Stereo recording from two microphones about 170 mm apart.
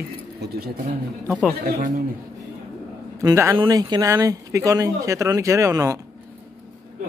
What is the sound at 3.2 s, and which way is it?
Speech, 20° right (ahead or behind).